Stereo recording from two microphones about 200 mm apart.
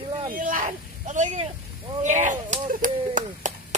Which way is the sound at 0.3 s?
45° right (ahead or behind).